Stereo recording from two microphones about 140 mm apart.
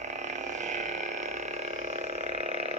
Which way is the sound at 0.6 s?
60° right (ahead or behind).